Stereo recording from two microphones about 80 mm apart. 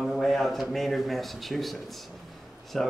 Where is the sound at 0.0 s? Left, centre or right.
Centre.